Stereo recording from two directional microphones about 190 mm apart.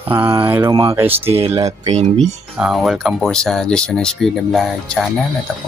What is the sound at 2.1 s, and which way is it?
Speech, centre (ahead or behind).